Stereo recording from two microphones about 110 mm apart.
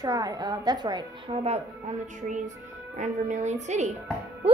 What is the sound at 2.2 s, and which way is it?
A woman's voice, 90° right.